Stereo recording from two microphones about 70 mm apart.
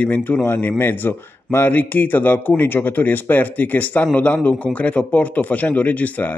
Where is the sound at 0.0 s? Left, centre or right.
Left.